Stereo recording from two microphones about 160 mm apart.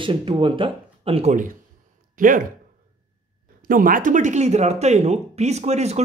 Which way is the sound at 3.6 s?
60° right (ahead or behind).